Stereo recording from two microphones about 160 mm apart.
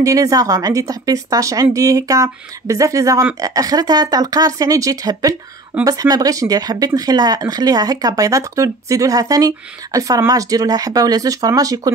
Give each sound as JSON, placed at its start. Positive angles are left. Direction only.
{"t": 0.0, "sound": "speech", "side_deg": -20}